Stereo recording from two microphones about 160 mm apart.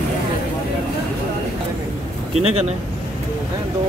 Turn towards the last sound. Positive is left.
turn(degrees=-40)  # may be behind; listen again after turning